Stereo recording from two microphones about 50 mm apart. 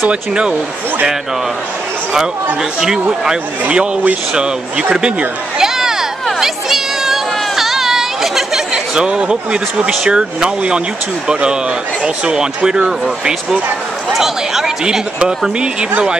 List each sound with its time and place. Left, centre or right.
0.1 s speech: right
2.8 s speech: centre
3.6 s speech: right
5.6 s a sound: centre
12.0 s speech: centre